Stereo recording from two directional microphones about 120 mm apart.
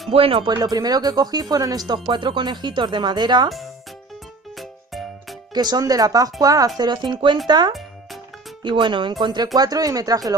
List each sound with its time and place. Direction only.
0.1 s speech: 50° right (ahead or behind)
5.5 s speech: 35° right (ahead or behind)